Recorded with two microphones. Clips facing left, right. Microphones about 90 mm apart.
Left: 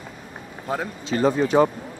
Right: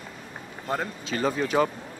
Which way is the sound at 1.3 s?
30° left (ahead or behind).